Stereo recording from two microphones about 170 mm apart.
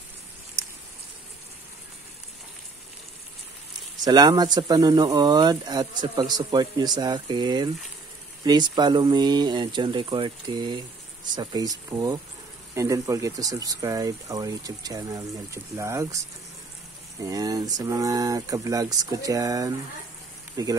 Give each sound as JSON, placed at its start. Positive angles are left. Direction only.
{"t": 0.6, "sound": "a sound", "side_deg": -15}
{"t": 4.0, "sound": "speech", "side_deg": -20}
{"t": 17.2, "sound": "speech", "side_deg": -20}